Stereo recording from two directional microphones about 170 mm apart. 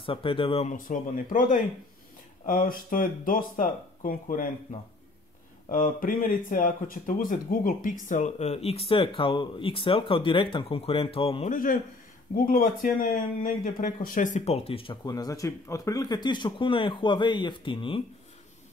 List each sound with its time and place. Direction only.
0.0 s speech: 30° left (ahead or behind)
0.7 s speech: 50° left (ahead or behind)
5.7 s speech: 50° left (ahead or behind); by 11.5 s 35° left (ahead or behind)
11.5 s speech: 50° left (ahead or behind); by 18.0 s 30° left (ahead or behind)